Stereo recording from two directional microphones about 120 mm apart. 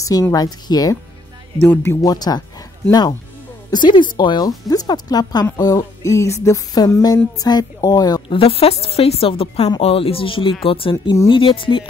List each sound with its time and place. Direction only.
0.0 s speech: 30° left (ahead or behind)
1.6 s speech: 15° left (ahead or behind)
2.0 s speech: 35° left (ahead or behind)
8.3 s a woman's voice: 55° left (ahead or behind)